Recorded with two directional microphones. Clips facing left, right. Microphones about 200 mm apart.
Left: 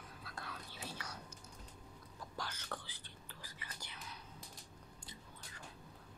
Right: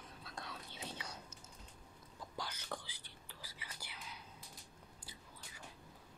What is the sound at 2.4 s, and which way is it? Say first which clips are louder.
Whispering: right 1 dB; 10° right (ahead or behind).